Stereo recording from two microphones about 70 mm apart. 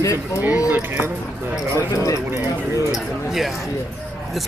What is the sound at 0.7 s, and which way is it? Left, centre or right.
Speech, right.